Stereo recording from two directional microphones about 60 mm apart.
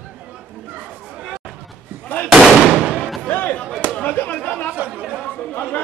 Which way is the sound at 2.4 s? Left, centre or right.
Centre.